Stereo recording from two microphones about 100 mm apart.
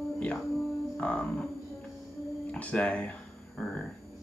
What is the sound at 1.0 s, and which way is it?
Speech, 10° left (ahead or behind).